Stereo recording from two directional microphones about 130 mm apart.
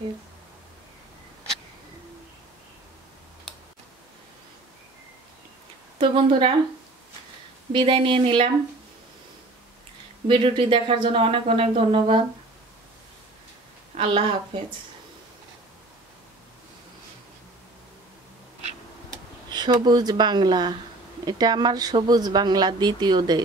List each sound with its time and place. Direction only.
5.9 s speech: 45° right (ahead or behind)
7.7 s speech: 45° right (ahead or behind)
10.2 s speech: 40° right (ahead or behind)
13.9 s speech: 45° right (ahead or behind)
19.5 s speech: 35° right (ahead or behind)